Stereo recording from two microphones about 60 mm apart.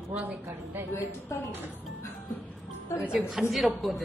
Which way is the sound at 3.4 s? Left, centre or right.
Centre.